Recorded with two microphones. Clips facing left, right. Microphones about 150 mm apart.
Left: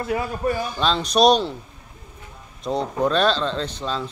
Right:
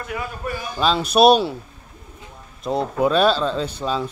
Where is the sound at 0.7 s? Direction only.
5° right (ahead or behind).